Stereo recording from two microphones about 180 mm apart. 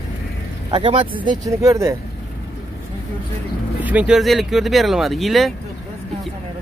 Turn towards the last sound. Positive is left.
turn(degrees=0)  # may be behind; listen again after turning